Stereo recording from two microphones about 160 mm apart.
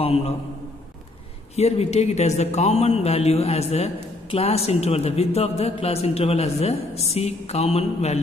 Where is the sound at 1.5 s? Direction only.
40° left (ahead or behind).